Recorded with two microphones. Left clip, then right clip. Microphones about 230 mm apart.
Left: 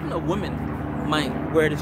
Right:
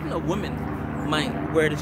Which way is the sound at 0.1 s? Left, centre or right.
Centre.